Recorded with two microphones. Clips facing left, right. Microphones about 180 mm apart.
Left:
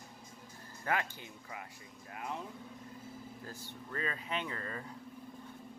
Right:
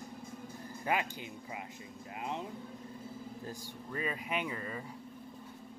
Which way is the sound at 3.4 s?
15° right (ahead or behind).